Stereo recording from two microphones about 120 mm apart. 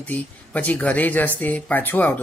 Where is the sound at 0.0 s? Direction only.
15° left (ahead or behind).